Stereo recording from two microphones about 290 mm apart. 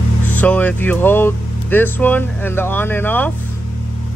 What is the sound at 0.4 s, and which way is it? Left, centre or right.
Speech, centre.